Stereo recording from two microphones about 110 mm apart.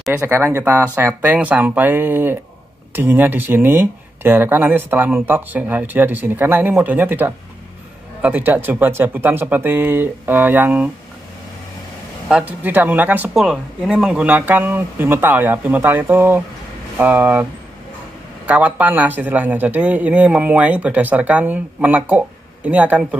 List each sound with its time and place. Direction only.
0.1 s speech: 20° right (ahead or behind)
12.3 s speech: 5° right (ahead or behind)
13.3 s speech: 5° right (ahead or behind)
18.5 s speech: 15° right (ahead or behind)